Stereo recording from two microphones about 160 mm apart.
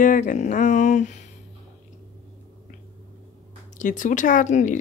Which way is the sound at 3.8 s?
55° left (ahead or behind).